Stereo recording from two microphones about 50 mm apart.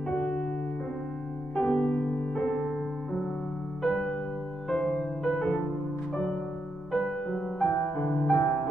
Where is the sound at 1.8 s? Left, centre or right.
Left.